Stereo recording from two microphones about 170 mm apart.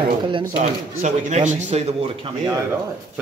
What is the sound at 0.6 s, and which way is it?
Speech, 45° right (ahead or behind).